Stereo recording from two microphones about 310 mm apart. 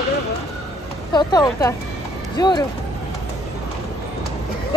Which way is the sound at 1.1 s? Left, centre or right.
Centre.